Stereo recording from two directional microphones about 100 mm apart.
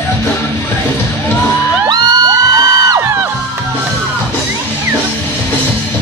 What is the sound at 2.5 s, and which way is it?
Music, 35° right (ahead or behind).